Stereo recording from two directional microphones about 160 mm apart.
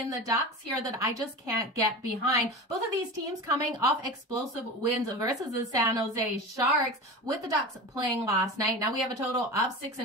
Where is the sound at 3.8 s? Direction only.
20° right (ahead or behind).